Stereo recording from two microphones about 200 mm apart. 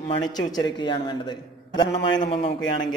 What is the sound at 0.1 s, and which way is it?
Mantra, 20° left (ahead or behind).